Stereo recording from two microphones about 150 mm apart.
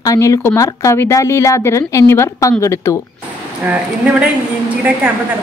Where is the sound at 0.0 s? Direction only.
20° left (ahead or behind).